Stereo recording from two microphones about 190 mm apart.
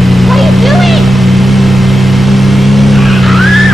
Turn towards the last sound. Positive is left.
turn(degrees=0)  # may be behind; listen again after turning